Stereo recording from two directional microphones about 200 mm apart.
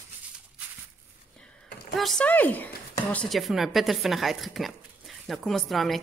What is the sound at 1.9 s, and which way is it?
A woman's voice, centre (ahead or behind).